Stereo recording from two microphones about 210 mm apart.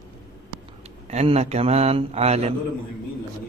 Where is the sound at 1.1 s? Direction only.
30° right (ahead or behind).